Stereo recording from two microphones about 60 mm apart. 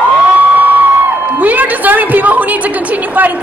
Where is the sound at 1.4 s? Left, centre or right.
Right.